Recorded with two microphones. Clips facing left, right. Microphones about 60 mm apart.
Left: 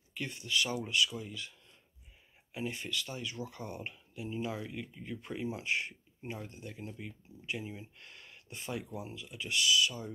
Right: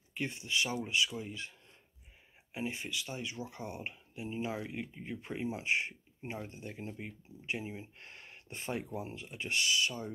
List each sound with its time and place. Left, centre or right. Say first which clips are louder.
0.1 s speech: even; right
2.5 s speech: even; right